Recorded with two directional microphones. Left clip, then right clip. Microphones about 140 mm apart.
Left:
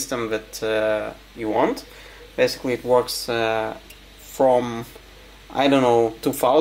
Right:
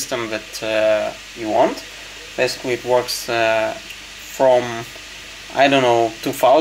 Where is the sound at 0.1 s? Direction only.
45° left (ahead or behind).